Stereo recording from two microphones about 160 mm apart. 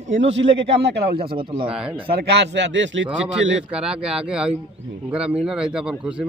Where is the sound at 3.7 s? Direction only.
5° right (ahead or behind).